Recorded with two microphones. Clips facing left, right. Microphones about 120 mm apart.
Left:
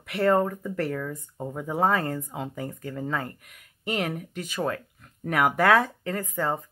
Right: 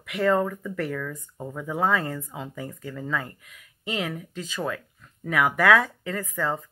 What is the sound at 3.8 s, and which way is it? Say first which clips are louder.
Speech: left 1 dB; 55° left (ahead or behind).